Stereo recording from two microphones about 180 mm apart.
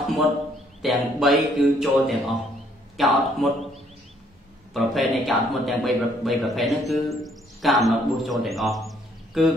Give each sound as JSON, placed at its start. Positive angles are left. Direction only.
{"t": 0.8, "sound": "a man's voice", "side_deg": 0}